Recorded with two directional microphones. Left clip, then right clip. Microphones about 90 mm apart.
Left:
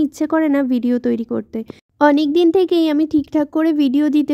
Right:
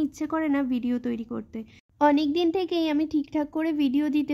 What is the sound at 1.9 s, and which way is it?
A child's voice, 70° left (ahead or behind).